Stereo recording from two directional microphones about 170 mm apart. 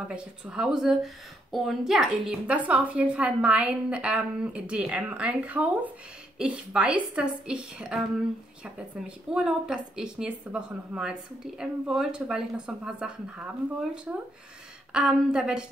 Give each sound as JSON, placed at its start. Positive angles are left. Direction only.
{"t": 0.1, "sound": "speech", "side_deg": -5}
{"t": 14.9, "sound": "speech", "side_deg": -5}